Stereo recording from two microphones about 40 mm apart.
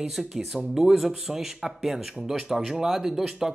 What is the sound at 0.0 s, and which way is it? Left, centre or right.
Speech, centre.